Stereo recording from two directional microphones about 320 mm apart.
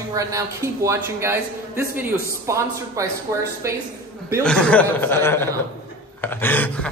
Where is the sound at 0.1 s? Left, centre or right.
Centre.